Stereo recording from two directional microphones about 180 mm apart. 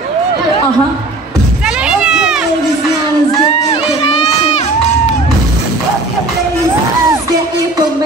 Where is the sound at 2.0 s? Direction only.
5° right (ahead or behind).